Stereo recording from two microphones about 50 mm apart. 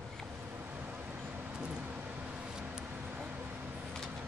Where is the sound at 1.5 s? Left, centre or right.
Right.